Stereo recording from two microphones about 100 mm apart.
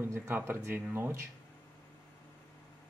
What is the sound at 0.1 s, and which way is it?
Speech, 25° right (ahead or behind).